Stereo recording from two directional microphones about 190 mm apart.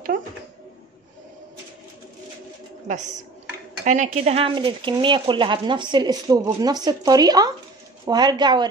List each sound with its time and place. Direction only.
3.8 s speech: 40° right (ahead or behind); by 8.6 s 20° right (ahead or behind)